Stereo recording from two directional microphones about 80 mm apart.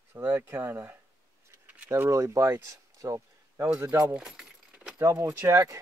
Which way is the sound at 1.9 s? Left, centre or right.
Right.